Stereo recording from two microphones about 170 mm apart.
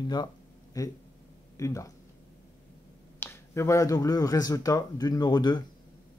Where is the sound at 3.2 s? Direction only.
15° left (ahead or behind).